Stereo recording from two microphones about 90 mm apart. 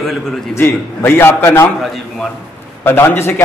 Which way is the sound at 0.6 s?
25° left (ahead or behind).